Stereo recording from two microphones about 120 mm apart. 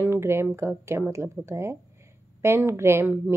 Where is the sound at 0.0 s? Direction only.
20° right (ahead or behind).